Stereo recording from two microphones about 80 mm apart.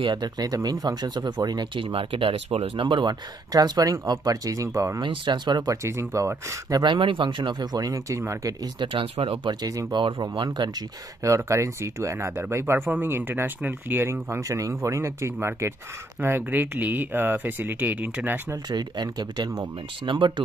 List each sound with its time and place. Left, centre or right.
0.0 s speech: right
3.5 s speech: right
5.0 s speech: right
5.7 s speech: right
6.8 s speech: right
8.7 s speech: right
9.6 s speech: right
9.9 s speech: right
10.3 s speech: right
11.2 s speech: right
18.7 s speech: right
20.1 s speech: right